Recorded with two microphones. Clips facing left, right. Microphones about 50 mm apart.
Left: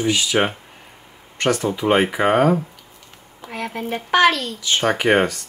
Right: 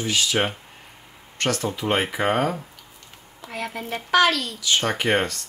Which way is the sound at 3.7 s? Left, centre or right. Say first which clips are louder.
Left 2 dB; left.